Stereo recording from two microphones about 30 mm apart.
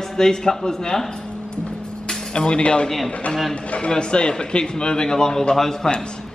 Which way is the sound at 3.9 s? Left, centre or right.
Left.